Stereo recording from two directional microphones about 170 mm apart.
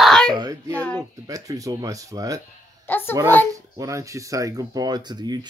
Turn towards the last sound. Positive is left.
turn(degrees=-25)  # may be behind; listen again after turning